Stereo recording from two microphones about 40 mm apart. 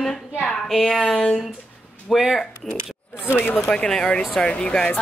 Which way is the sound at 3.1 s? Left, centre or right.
Left.